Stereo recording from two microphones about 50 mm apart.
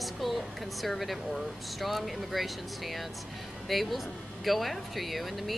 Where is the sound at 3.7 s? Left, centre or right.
Centre.